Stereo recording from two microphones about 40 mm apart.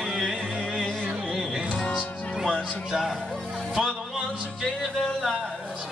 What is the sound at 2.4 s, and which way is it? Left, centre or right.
Music, centre.